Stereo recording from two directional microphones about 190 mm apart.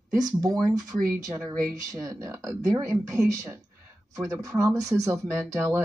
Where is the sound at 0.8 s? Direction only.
20° right (ahead or behind).